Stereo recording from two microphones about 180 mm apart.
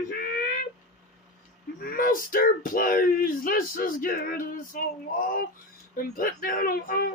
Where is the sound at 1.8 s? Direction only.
50° left (ahead or behind).